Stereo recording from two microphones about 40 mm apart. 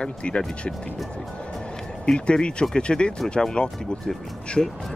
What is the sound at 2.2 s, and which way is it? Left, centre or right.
Speech, left.